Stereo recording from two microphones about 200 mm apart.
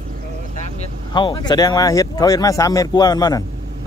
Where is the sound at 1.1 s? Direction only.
25° left (ahead or behind).